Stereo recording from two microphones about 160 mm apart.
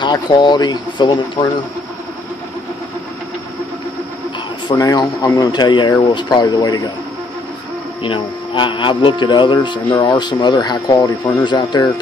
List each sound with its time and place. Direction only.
0.0 s speech: 25° left (ahead or behind)
4.6 s speech: 25° left (ahead or behind)
8.0 s speech: 30° left (ahead or behind)